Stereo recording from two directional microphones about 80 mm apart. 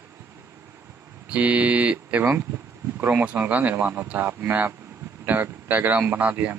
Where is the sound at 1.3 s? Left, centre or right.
Centre.